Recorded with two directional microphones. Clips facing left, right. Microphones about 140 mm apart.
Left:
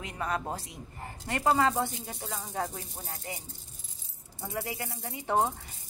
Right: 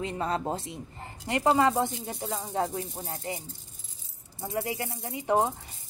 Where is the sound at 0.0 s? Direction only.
30° right (ahead or behind).